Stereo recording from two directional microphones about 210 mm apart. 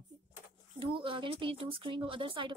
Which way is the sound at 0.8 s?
25° right (ahead or behind).